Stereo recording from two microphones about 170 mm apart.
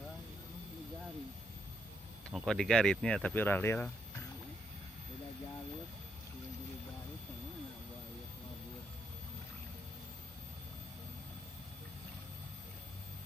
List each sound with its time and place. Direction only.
2.3 s speech: centre (ahead or behind)